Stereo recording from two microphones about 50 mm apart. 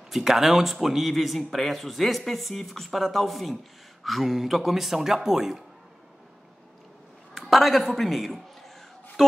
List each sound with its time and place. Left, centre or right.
0.1 s speech: centre
7.3 s a woman's voice: centre